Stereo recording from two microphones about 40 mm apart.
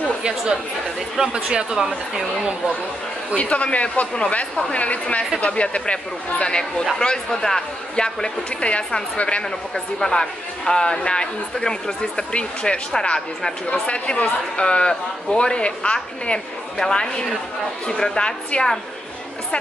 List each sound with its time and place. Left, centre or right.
0.9 s speech: centre
3.3 s speech: left
9.9 s speech: centre